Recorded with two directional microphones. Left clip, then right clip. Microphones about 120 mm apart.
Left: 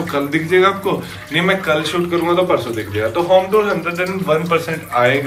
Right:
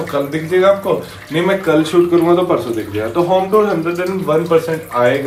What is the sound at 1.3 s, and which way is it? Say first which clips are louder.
Speech: right 2 dB; 45° right (ahead or behind).